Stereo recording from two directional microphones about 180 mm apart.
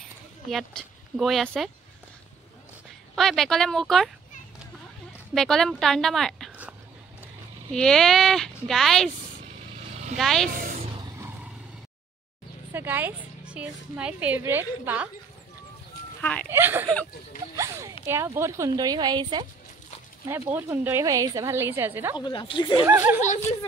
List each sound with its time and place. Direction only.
0.5 s speech: centre (ahead or behind)
3.2 s speech: centre (ahead or behind)
5.3 s speech: centre (ahead or behind)
7.7 s speech: 5° left (ahead or behind)
10.1 s speech: centre (ahead or behind)
10.5 s a sound: 50° right (ahead or behind)
12.7 s a woman's voice: 10° right (ahead or behind)
16.2 s speech: 5° left (ahead or behind)
16.4 s a woman's voice: 10° right (ahead or behind)
18.0 s a woman's voice: 15° right (ahead or behind)
20.5 s a woman's voice: 10° right (ahead or behind)
22.1 s speech: 25° left (ahead or behind)
22.8 s a woman's voice: 10° right (ahead or behind)